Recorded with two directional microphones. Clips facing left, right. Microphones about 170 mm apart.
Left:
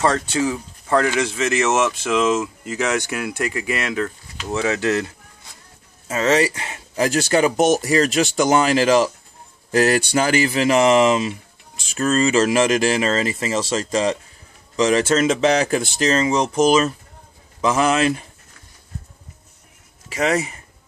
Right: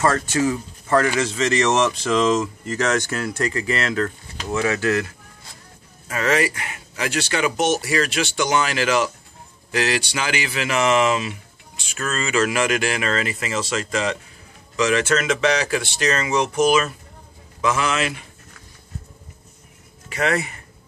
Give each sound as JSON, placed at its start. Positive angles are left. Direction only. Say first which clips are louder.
{"t": 0.0, "sound": "speech", "louder": "even", "side_deg": 15}
{"t": 4.5, "sound": "speech", "louder": "left 1 dB", "side_deg": 20}
{"t": 7.0, "sound": "speech", "louder": "left 6 dB", "side_deg": 40}